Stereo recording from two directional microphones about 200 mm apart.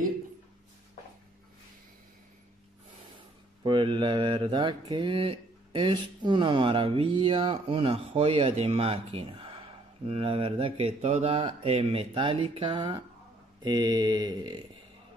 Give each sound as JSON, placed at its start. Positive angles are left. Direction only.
{"t": 3.6, "sound": "mantra", "side_deg": -25}